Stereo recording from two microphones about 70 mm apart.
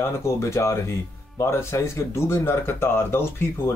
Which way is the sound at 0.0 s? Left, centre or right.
Left.